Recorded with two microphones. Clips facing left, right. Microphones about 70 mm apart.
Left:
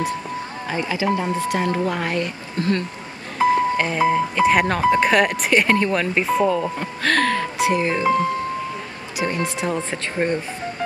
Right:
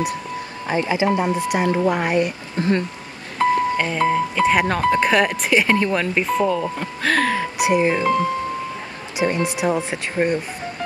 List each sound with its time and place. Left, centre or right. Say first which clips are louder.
0.7 s speech: right 3 dB; right
3.3 s speech: left 1 dB; centre
7.6 s speech: right 3 dB; centre
9.2 s speech: right 3 dB; centre